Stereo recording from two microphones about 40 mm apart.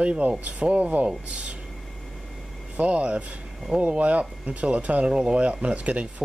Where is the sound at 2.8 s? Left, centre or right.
Right.